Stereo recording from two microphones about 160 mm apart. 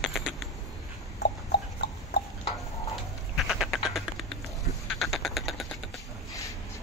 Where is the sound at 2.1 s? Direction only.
90° left.